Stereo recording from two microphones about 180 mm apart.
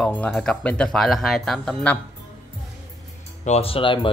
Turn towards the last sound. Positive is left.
turn(degrees=30)  # may be behind; listen again after turning